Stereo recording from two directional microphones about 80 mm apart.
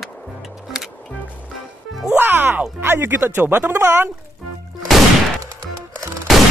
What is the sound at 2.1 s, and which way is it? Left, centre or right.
Music, right.